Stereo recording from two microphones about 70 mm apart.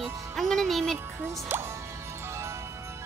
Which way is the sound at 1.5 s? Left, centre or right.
Right.